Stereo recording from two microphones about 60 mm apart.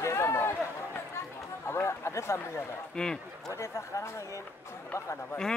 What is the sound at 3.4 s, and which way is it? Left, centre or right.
Speech, left.